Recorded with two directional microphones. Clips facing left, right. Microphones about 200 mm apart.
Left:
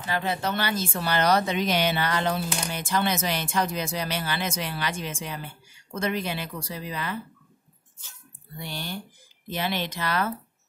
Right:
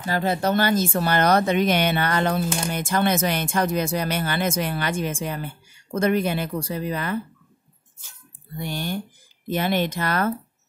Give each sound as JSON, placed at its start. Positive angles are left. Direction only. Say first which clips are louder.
{"t": 0.0, "sound": "speech", "louder": "right 5 dB", "side_deg": -40}
{"t": 8.5, "sound": "speech", "louder": "right 7 dB", "side_deg": -50}